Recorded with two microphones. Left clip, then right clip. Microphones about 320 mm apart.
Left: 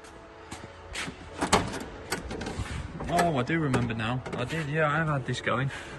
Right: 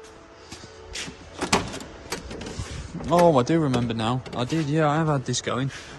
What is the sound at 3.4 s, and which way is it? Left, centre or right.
Speech, centre.